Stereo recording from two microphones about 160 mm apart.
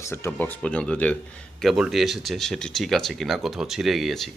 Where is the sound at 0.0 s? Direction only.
15° left (ahead or behind).